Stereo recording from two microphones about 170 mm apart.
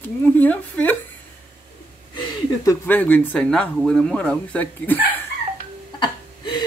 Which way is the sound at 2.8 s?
10° left (ahead or behind).